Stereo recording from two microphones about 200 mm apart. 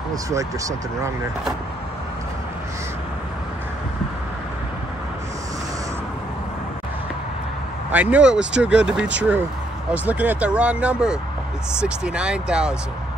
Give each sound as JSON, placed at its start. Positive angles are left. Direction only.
{"t": 0.1, "sound": "speech", "side_deg": -15}
{"t": 7.9, "sound": "speech", "side_deg": -5}